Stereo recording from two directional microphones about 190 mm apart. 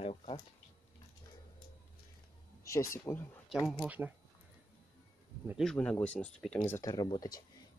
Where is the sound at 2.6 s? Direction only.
15° left (ahead or behind).